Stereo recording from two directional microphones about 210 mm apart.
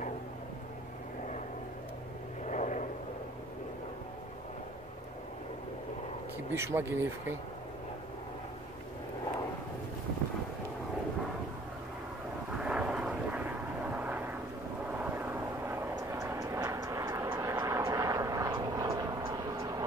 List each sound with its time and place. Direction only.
2.4 s vehicle: 35° left (ahead or behind)
6.5 s speech: 10° right (ahead or behind)
12.5 s vehicle: 5° right (ahead or behind)